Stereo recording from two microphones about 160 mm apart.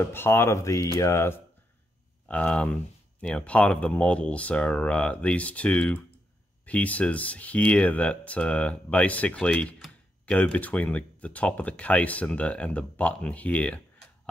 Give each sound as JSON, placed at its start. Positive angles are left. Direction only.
{"t": 0.0, "sound": "speech", "side_deg": 15}